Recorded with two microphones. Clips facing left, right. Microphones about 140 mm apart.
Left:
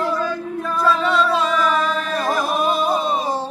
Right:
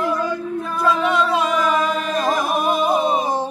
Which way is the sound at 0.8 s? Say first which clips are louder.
Even; 15° right (ahead or behind).